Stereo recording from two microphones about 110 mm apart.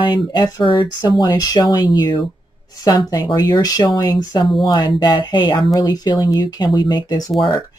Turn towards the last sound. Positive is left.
turn(degrees=35)  # may be behind; listen again after turning